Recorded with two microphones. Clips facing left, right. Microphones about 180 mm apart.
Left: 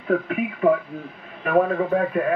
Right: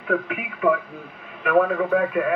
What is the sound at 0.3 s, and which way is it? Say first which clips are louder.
Speech: left 3 dB; 35° left (ahead or behind).